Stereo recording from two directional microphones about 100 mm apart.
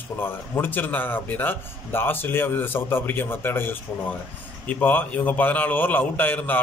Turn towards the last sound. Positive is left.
turn(degrees=20)  # may be behind; listen again after turning